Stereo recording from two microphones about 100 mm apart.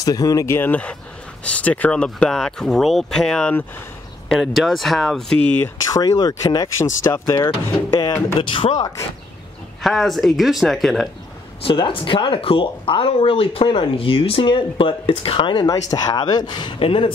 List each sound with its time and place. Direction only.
0.0 s speech: 40° left (ahead or behind)
0.5 s speech: 20° left (ahead or behind); by 5.2 s centre (ahead or behind)
5.4 s speech: 15° left (ahead or behind)
5.9 s speech: 40° left (ahead or behind)
6.8 s speech: 30° left (ahead or behind)
8.4 s speech: 60° left (ahead or behind)
9.8 s speech: 5° left (ahead or behind)
11.6 s speech: 60° left (ahead or behind)
15.6 s speech: 40° left (ahead or behind)
16.8 s speech: 70° left (ahead or behind)